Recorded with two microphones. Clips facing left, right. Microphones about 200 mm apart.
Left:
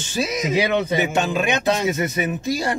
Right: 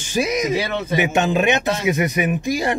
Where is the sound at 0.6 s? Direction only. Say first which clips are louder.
Left 4 dB; 15° left (ahead or behind).